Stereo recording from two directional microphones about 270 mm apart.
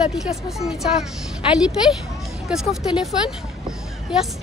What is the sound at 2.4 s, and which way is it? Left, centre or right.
Speech, centre.